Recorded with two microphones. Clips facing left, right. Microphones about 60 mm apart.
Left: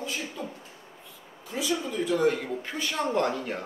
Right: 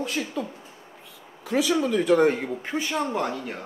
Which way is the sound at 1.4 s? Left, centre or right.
Right.